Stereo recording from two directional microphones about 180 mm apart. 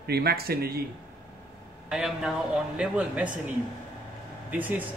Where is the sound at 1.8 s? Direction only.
5° right (ahead or behind).